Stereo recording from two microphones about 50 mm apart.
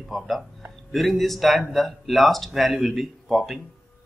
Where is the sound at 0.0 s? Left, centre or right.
Centre.